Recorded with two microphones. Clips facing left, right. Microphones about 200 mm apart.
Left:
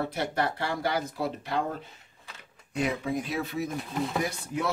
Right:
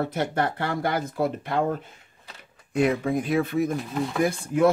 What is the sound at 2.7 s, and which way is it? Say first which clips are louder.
Speech: right 6 dB; 55° right (ahead or behind).